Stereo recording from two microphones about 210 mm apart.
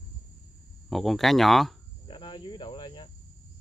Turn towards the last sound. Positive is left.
turn(degrees=20)  # may be behind; listen again after turning